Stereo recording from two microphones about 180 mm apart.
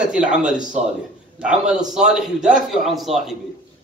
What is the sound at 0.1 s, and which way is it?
A man's voice, 5° right (ahead or behind).